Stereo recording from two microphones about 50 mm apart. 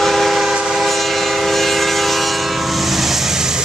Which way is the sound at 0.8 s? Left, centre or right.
Centre.